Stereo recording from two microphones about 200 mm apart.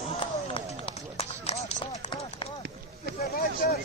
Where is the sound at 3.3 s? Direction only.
45° left (ahead or behind).